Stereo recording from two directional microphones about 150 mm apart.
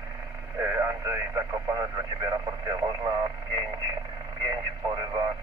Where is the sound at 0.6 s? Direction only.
20° right (ahead or behind).